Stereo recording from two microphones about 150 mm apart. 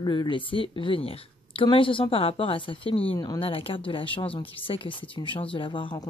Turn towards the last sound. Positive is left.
turn(degrees=35)  # may be behind; listen again after turning